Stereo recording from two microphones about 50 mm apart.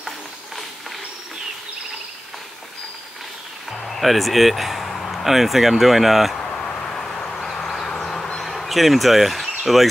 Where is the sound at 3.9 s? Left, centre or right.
Centre.